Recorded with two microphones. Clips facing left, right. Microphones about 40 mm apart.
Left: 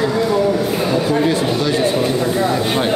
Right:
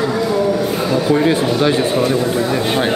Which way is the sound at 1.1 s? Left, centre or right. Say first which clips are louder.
Right 2 dB; right.